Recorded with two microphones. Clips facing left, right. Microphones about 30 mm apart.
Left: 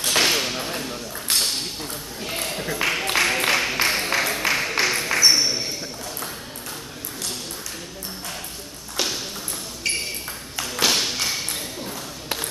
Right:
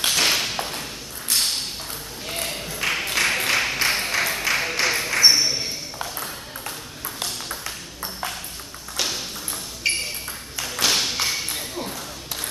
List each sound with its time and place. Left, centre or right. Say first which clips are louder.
0.2 s a sound: even; centre
2.7 s music: left 2 dB; centre
3.2 s a sound: left 1 dB; centre
5.3 s ping: even; centre
8.9 s tap: left 1 dB; centre
9.8 s ping: right 2 dB; centre
10.6 s tap: left 1 dB; centre